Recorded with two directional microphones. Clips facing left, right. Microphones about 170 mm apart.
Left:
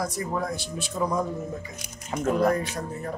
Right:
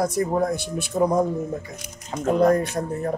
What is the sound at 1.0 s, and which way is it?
Speech, 35° right (ahead or behind).